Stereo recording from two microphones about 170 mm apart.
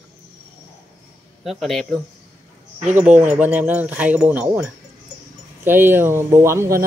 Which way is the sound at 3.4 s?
10° right (ahead or behind).